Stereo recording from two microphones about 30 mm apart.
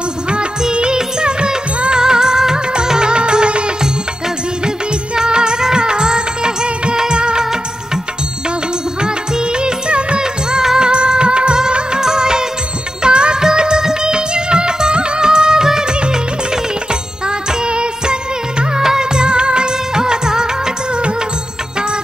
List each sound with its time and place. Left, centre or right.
0.7 s music: right
4.6 s music of bollywood: right
9.0 s music: right
10.2 s music: centre
10.8 s music of bollywood: right
13.0 s music: right
13.4 s music of bollywood: right
15.9 s music: right
17.3 s music: right
18.8 s music: centre
19.1 s music of bollywood: right